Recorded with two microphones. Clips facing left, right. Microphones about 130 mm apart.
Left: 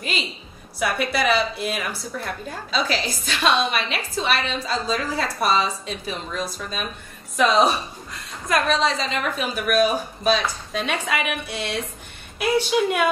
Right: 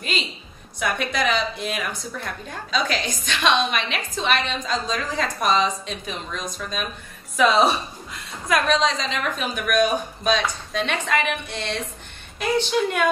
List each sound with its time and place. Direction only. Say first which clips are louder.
0.7 s a woman's voice: left 2 dB; 5° left (ahead or behind)